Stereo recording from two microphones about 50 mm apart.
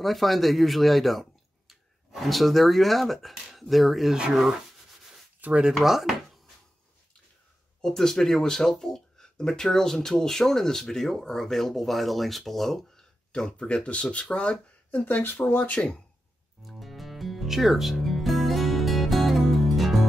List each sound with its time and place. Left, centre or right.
0.0 s speech: centre
5.4 s speech: right
5.8 s speech: centre
7.8 s speech: centre
13.6 s speech: centre; by 15.8 s left
16.6 s music: centre